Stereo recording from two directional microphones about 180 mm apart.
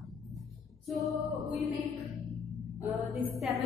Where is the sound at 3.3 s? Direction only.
Centre (ahead or behind).